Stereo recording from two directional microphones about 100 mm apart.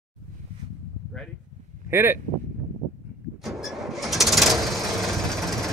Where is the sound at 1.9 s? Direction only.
25° right (ahead or behind).